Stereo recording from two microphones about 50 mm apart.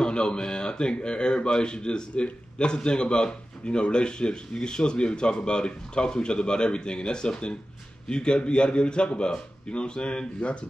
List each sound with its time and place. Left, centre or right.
0.0 s speech: centre